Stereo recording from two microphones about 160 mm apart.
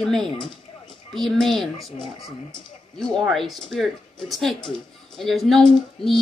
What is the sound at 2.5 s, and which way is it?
Speech, 35° left (ahead or behind).